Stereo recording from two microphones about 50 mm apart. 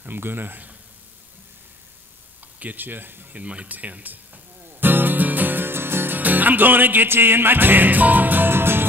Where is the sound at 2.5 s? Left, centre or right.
Right.